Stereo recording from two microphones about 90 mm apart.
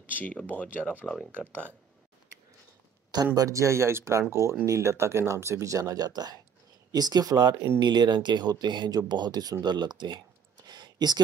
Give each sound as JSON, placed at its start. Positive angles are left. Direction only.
{"t": 0.2, "sound": "speech", "side_deg": 15}
{"t": 3.3, "sound": "speech", "side_deg": -35}
{"t": 10.7, "sound": "a sound", "side_deg": -50}